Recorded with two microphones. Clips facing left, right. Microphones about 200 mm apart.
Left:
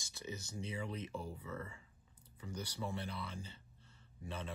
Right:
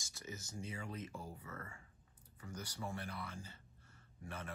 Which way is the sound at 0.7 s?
15° left (ahead or behind).